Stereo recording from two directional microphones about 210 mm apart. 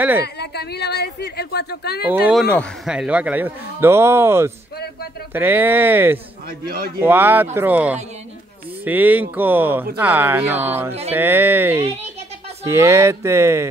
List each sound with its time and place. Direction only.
0.2 s a woman's voice: 50° left (ahead or behind)
2.0 s speech: 5° right (ahead or behind)
11.8 s a child's voice: 30° right (ahead or behind)
12.6 s speech: 15° right (ahead or behind)